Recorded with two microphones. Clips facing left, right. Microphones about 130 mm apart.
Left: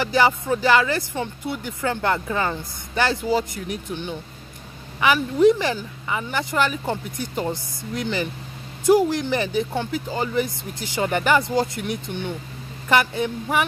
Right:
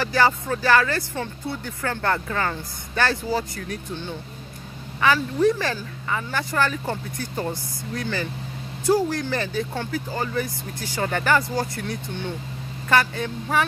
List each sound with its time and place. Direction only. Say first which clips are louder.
0.0 s speech: left 1 dB; 15° left (ahead or behind)